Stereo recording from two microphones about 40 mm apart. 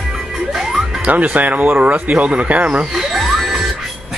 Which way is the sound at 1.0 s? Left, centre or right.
Right.